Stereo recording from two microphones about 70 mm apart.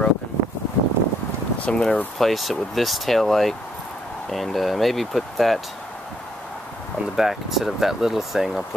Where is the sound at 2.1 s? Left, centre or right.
Centre.